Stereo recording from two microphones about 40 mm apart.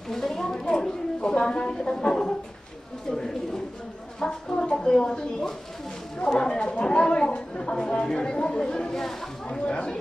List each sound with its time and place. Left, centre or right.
0.1 s a sound: centre
3.1 s bird: centre
4.2 s a woman's voice: centre
8.9 s speech: centre
9.7 s a woman's voice: left